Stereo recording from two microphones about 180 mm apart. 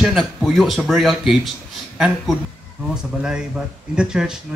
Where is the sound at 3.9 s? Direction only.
5° right (ahead or behind).